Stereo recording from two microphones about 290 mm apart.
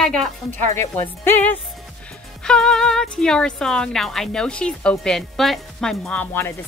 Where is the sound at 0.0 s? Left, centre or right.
Centre.